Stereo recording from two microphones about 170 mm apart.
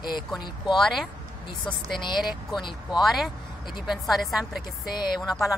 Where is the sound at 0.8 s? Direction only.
Centre (ahead or behind).